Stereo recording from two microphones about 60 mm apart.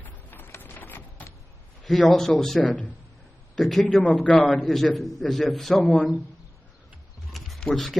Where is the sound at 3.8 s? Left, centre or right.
Left.